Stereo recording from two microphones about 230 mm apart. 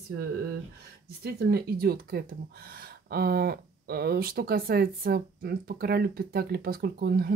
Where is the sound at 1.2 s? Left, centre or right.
Right.